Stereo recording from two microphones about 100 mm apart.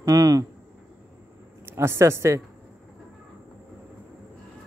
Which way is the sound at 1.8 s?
25° right (ahead or behind).